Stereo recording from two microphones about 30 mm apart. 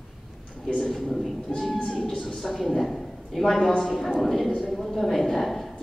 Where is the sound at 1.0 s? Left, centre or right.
Centre.